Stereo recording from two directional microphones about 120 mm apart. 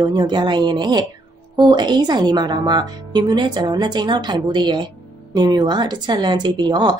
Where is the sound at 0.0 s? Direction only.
35° right (ahead or behind).